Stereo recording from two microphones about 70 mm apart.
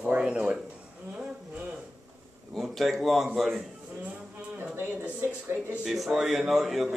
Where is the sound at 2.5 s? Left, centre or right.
Centre.